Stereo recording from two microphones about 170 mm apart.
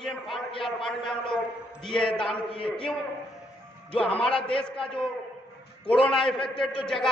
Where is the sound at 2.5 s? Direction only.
30° left (ahead or behind).